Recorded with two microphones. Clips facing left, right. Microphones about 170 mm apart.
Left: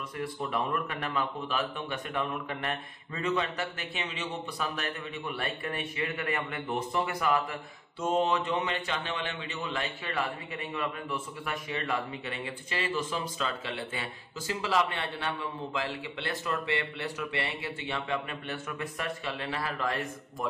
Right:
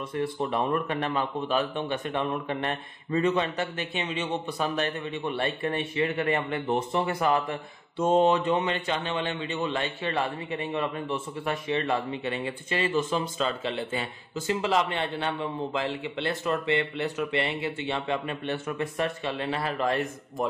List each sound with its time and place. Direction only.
0.1 s a man's voice: 30° right (ahead or behind)